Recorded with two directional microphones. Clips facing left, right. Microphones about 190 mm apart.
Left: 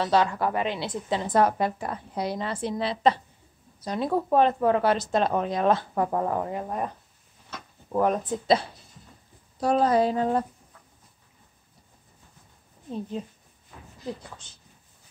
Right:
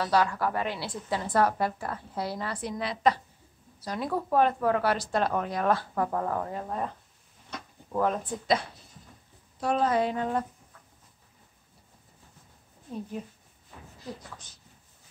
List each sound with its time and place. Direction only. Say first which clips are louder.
0.0 s a woman's voice: left 3 dB; 25° left (ahead or behind)
7.9 s a woman's voice: left 4 dB; 20° left (ahead or behind)
9.6 s speech: left 4 dB; 35° left (ahead or behind)